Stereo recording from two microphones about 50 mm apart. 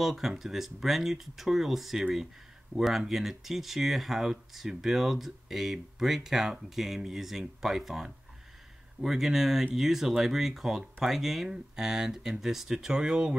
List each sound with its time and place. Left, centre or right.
0.0 s speech: centre